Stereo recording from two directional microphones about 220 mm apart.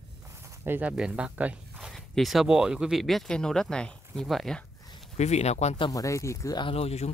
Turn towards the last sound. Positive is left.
turn(degrees=30)  # may be behind; listen again after turning